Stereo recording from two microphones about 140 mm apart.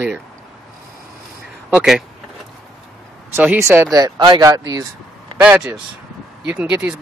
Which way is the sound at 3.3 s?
15° right (ahead or behind).